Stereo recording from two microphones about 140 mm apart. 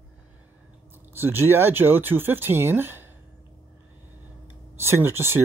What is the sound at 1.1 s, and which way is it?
Speech, 15° right (ahead or behind).